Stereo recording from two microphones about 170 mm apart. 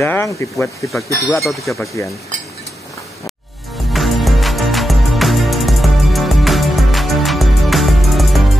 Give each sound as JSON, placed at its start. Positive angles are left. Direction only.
{"t": 0.0, "sound": "speech", "side_deg": 15}
{"t": 1.7, "sound": "speech", "side_deg": 15}
{"t": 3.9, "sound": "music", "side_deg": 0}